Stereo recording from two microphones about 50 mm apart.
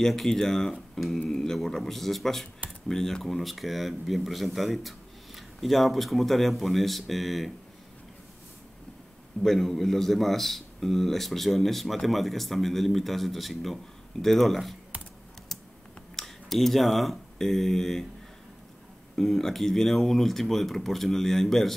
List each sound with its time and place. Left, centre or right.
0.0 s speech: centre
9.4 s speech: centre
16.2 s speech: centre
19.1 s speech: centre